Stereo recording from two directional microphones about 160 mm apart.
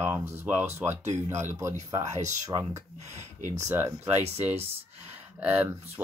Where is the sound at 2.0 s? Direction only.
45° right (ahead or behind).